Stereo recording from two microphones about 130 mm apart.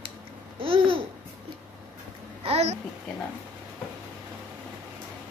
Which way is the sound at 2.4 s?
55° right (ahead or behind).